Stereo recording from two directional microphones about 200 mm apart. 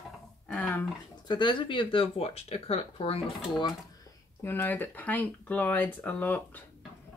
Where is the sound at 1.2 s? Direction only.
25° left (ahead or behind).